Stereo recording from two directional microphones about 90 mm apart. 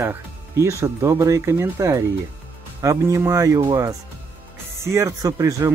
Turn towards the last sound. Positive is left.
turn(degrees=-40)  # may be behind; listen again after turning